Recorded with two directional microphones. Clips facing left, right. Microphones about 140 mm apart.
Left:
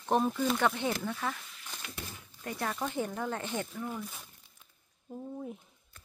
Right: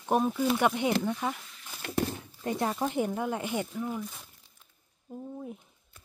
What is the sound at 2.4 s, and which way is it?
Speech, 25° right (ahead or behind).